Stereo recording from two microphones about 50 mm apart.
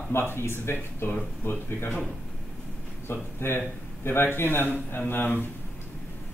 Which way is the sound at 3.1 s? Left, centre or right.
Left.